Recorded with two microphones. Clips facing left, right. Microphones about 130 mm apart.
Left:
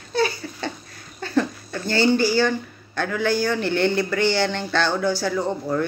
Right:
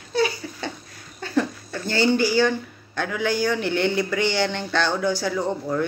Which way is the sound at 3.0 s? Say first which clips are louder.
Left 1 dB; 15° right (ahead or behind).